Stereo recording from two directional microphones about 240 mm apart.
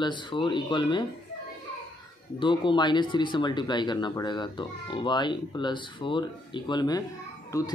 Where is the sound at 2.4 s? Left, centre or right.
Centre.